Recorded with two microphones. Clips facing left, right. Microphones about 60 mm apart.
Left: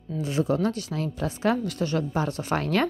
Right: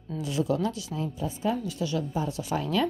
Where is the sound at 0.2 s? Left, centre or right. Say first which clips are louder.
Left 3 dB; left.